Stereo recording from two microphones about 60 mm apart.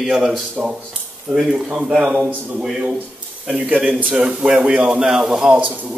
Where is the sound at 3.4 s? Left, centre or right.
Centre.